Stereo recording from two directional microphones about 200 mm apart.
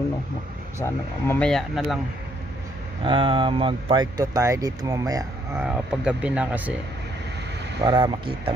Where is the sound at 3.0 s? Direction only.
25° right (ahead or behind).